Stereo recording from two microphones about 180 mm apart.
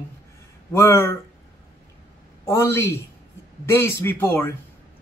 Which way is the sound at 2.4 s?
15° left (ahead or behind).